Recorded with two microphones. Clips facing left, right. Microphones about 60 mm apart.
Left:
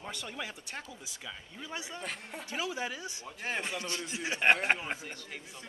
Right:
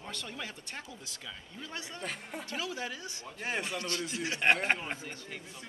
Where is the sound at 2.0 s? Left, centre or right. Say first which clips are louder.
Right 1 dB; centre.